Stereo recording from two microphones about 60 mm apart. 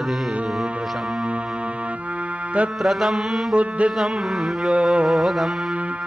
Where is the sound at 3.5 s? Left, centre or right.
Right.